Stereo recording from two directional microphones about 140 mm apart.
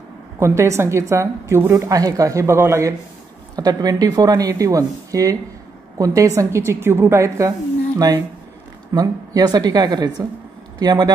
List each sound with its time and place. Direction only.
0.4 s a woman's voice: 20° right (ahead or behind)
8.9 s a woman's voice: 25° right (ahead or behind)